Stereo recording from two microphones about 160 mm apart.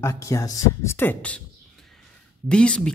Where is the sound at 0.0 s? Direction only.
20° left (ahead or behind).